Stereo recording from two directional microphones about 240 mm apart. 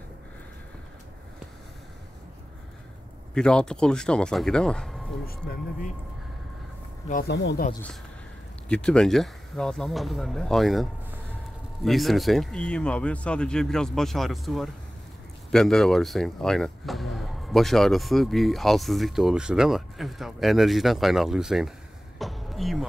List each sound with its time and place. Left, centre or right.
3.3 s speech: centre
7.1 s speech: left
8.6 s speech: centre
22.2 s a sound: centre